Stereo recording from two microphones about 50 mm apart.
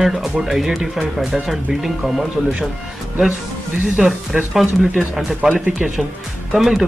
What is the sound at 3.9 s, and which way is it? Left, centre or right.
Speech, centre.